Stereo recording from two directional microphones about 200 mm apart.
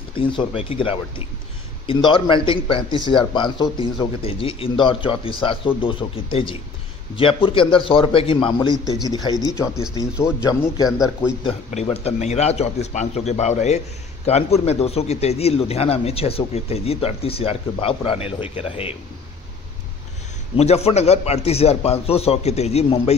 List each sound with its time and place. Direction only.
0.1 s a man's voice: 25° left (ahead or behind)
2.0 s a man's voice: 25° left (ahead or behind)
10.9 s speech: centre (ahead or behind)
11.4 s a man's voice: 30° left (ahead or behind)
20.5 s a man's voice: 30° left (ahead or behind)